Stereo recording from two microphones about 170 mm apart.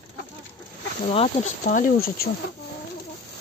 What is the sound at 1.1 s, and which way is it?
Speech, 40° left (ahead or behind).